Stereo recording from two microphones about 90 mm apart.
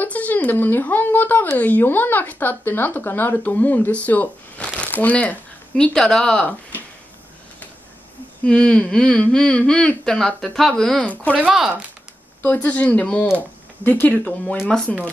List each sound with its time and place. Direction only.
0.0 s speech: 20° left (ahead or behind)
4.7 s crumpling: 15° left (ahead or behind)
5.9 s speech: 5° left (ahead or behind)
8.5 s speech: 10° left (ahead or behind)
11.4 s speech: 5° right (ahead or behind)
12.4 s speech: 20° left (ahead or behind)